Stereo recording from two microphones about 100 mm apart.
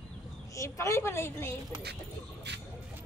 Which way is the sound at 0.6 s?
30° left (ahead or behind).